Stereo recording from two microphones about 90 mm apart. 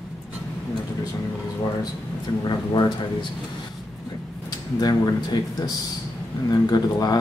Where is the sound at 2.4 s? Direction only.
55° left (ahead or behind).